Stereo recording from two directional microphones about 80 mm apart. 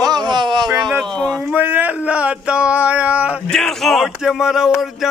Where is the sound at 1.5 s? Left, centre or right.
Right.